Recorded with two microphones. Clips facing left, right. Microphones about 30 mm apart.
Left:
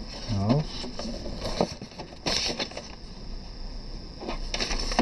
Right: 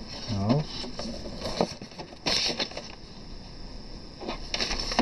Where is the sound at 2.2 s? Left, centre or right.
Centre.